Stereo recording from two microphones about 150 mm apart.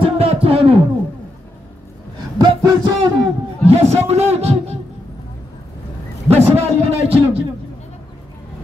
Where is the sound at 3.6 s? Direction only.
45° right (ahead or behind).